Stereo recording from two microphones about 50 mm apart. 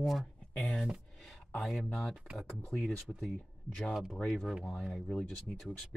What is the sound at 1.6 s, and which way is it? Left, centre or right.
Speech, centre.